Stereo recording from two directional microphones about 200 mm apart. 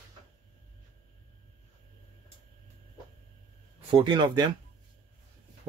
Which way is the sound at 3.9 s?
25° right (ahead or behind).